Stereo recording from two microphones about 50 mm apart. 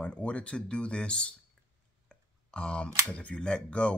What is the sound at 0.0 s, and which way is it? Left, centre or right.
Speech, left.